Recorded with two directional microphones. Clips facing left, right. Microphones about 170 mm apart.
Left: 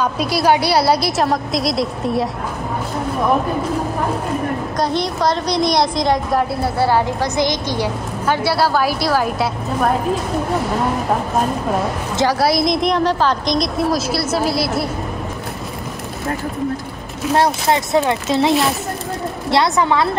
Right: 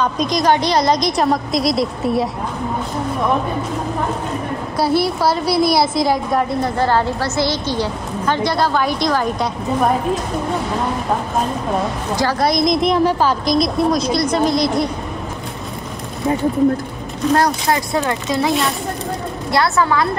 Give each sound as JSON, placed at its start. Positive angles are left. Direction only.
{"t": 0.0, "sound": "a woman's voice", "side_deg": 5}
{"t": 4.7, "sound": "a woman's voice", "side_deg": -5}
{"t": 6.6, "sound": "a woman's voice", "side_deg": 10}
{"t": 12.3, "sound": "a woman's voice", "side_deg": 5}
{"t": 17.2, "sound": "a woman's voice", "side_deg": 5}
{"t": 17.6, "sound": "speech", "side_deg": 20}
{"t": 18.5, "sound": "a woman's voice", "side_deg": 0}
{"t": 19.5, "sound": "speech", "side_deg": 20}